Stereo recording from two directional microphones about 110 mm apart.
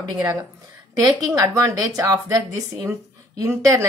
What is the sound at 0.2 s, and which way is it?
A woman's voice, 35° right (ahead or behind).